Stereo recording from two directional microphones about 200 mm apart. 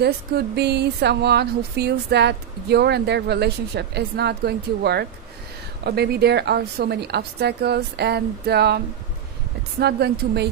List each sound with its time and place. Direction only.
0.0 s a woman's voice: 55° right (ahead or behind)